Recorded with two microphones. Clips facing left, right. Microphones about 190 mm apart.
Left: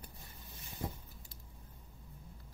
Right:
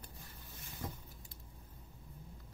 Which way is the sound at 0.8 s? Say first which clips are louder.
Left 3 dB; 30° left (ahead or behind).